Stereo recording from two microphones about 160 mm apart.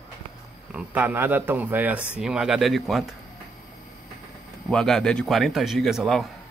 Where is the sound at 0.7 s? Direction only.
10° right (ahead or behind).